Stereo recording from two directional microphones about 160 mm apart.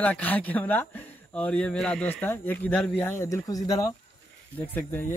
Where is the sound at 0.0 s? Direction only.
10° left (ahead or behind).